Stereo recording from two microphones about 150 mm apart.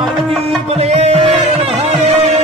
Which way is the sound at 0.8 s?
45° right (ahead or behind).